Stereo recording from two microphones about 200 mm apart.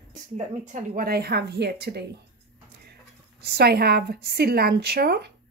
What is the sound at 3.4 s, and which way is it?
Speech, 55° right (ahead or behind).